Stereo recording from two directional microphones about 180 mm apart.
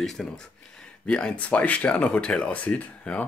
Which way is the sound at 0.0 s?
Centre (ahead or behind).